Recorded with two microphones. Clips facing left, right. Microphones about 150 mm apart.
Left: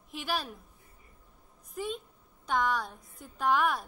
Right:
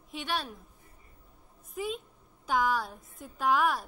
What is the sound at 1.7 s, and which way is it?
A woman's voice, centre (ahead or behind).